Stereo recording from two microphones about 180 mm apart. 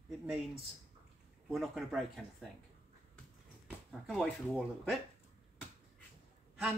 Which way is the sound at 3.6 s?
Centre (ahead or behind).